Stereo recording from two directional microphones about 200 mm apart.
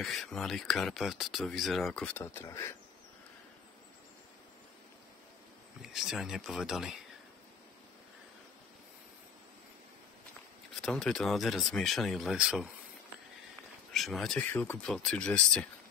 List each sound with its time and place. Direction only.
0.0 s speech: centre (ahead or behind)
5.8 s speech: centre (ahead or behind)
10.8 s speech: 5° left (ahead or behind)
13.9 s speech: centre (ahead or behind)